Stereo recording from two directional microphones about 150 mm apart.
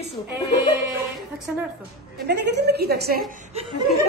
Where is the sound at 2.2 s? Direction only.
90° right.